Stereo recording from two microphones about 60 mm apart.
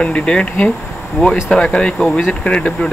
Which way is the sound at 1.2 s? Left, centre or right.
Left.